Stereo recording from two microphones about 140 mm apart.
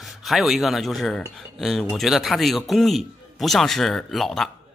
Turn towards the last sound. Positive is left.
turn(degrees=0)  # may be behind; listen again after turning